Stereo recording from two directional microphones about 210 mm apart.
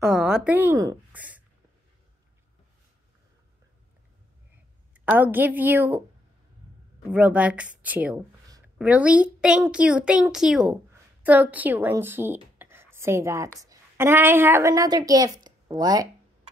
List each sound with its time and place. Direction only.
0.0 s a woman's voice: 5° right (ahead or behind)
5.0 s speech: 10° right (ahead or behind)
7.1 s a child's voice: 5° right (ahead or behind)